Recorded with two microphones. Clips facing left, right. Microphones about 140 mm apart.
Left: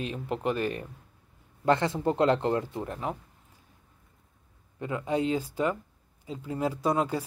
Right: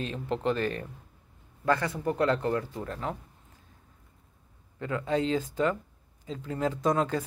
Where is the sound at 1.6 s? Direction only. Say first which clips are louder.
Left 3 dB; 25° left (ahead or behind).